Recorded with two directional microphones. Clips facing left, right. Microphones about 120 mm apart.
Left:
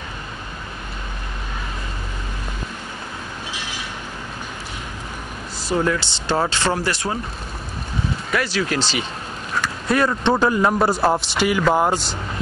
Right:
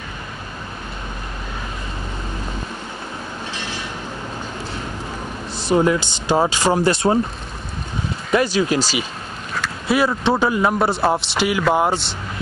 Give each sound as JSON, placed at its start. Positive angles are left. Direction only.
{"t": 5.6, "sound": "speech", "side_deg": -20}
{"t": 8.3, "sound": "a man's voice", "side_deg": -20}